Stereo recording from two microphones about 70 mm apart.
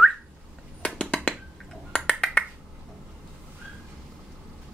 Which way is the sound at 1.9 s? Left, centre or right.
Centre.